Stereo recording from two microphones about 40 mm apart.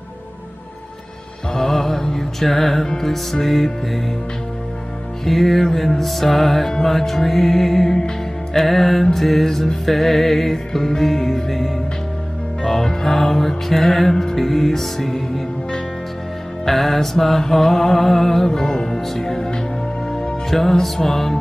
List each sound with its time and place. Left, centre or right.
1.5 s music: centre
5.2 s music: centre
16.6 s music: centre
20.8 s music: centre